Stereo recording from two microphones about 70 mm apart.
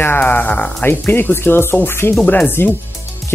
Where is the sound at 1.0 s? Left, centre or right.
Left.